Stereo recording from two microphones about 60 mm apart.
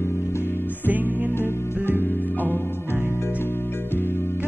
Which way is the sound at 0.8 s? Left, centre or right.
Right.